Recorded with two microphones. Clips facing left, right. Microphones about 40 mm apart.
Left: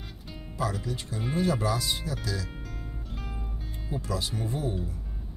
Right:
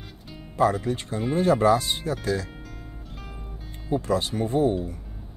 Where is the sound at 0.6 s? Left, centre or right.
Right.